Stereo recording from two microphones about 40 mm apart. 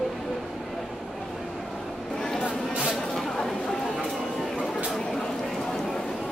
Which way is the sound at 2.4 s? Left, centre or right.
Right.